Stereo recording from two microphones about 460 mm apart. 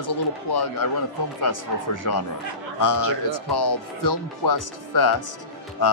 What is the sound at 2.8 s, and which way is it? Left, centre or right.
Speech, left.